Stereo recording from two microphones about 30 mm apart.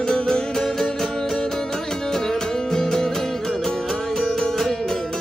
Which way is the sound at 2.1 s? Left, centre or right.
Centre.